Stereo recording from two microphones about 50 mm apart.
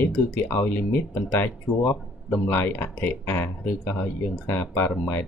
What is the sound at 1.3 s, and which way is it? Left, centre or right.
Speech, left.